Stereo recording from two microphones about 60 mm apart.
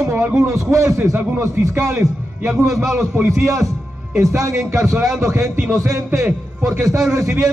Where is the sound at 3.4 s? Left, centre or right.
Right.